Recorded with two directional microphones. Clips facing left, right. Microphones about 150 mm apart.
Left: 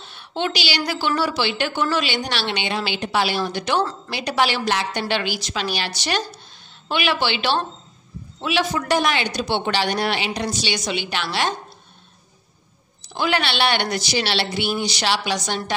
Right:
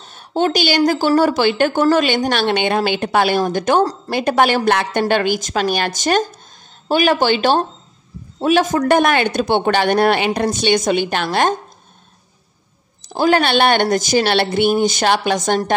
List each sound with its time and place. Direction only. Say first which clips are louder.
0.0 s a woman's voice: right 7 dB; 40° right (ahead or behind)
13.0 s a woman's voice: right 8 dB; 45° right (ahead or behind)